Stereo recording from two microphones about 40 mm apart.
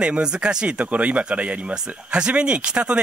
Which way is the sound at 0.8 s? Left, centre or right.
Right.